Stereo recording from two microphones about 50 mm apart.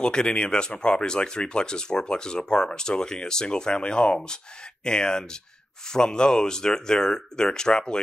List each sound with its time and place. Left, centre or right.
0.0 s speech: centre